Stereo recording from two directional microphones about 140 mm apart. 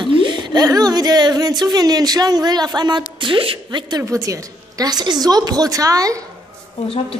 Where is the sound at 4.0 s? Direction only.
25° right (ahead or behind).